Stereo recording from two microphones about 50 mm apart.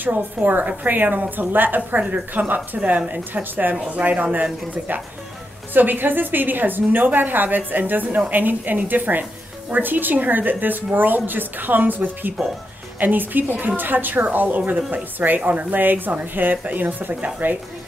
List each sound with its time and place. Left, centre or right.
0.0 s a woman's voice: right
1.9 s a woman's voice: right